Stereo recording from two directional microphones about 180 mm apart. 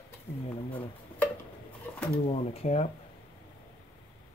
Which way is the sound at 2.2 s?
35° left (ahead or behind).